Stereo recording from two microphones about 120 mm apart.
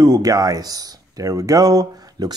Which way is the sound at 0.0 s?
30° right (ahead or behind).